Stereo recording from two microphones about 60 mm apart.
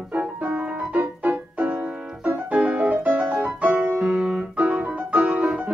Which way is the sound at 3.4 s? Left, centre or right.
Right.